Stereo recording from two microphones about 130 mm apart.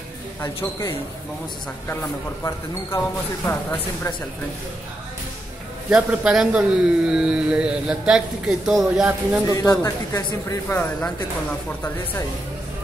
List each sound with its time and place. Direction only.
0.4 s a woman's voice: 20° left (ahead or behind)
5.9 s speech: 5° right (ahead or behind)
9.5 s a woman's voice: 25° left (ahead or behind)